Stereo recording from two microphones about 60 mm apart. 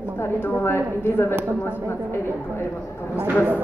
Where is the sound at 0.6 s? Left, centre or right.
Left.